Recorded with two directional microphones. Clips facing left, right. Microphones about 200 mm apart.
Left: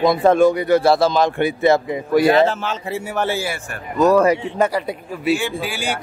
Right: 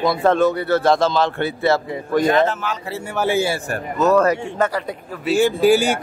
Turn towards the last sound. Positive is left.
turn(degrees=-45)  # may be behind; listen again after turning